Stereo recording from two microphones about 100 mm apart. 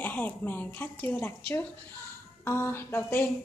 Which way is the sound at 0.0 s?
15° left (ahead or behind).